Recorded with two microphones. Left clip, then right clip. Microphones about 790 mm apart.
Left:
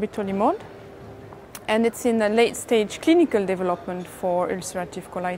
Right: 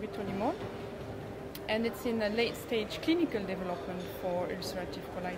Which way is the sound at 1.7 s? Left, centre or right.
Left.